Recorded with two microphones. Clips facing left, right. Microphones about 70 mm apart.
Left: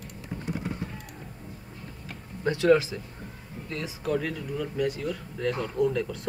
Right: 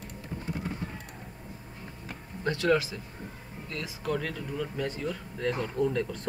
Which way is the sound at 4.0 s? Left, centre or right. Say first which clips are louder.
Left 3 dB; centre.